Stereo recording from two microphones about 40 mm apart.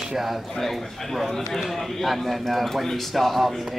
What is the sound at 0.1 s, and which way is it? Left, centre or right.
Speech, centre.